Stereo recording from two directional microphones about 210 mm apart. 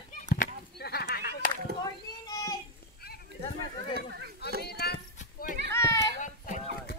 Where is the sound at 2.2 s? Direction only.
20° left (ahead or behind).